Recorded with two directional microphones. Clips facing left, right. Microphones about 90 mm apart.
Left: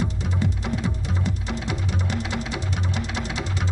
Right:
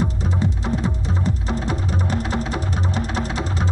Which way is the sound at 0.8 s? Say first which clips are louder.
Right 4 dB; 35° right (ahead or behind).